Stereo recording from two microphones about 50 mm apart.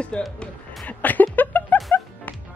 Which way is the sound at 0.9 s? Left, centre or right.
Left.